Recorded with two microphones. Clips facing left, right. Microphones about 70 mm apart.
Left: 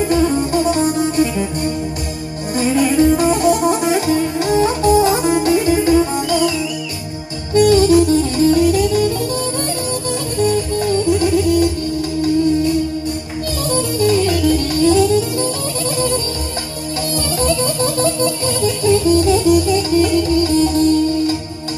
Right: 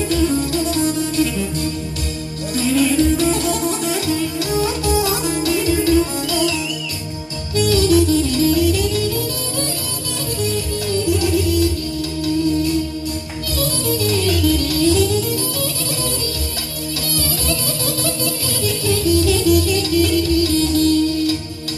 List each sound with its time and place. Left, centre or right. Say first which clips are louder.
0.1 s music: left 1 dB; left
2.9 s music: left 3 dB; centre
3.8 s music: left 5 dB; left
7.5 s music: left 5 dB; left
10.5 s music: left 5 dB; left
13.7 s music: left 6 dB; left
17.4 s music: left 7 dB; left